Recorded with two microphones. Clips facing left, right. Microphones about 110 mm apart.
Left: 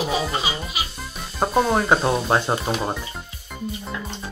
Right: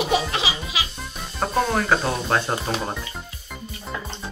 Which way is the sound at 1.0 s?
5° left (ahead or behind).